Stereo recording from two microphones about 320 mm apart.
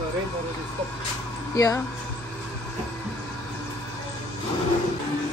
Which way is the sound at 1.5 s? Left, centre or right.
Centre.